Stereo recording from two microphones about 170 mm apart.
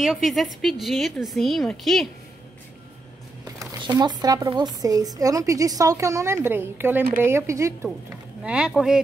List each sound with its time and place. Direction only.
0.0 s a woman's voice: centre (ahead or behind)
3.5 s speech: 25° right (ahead or behind)
8.5 s a woman's voice: 5° right (ahead or behind)